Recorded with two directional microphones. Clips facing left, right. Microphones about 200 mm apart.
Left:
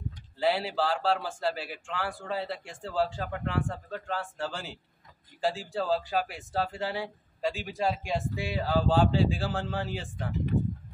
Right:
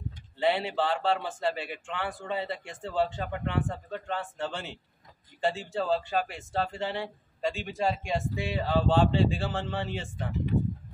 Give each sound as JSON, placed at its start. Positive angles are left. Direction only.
{"t": 0.4, "sound": "speech", "side_deg": 0}